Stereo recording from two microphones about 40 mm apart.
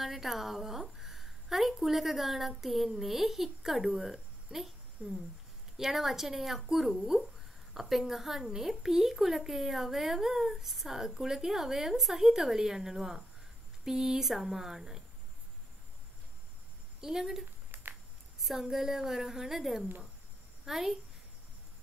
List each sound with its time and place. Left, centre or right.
0.0 s a woman's voice: centre
17.0 s speech: centre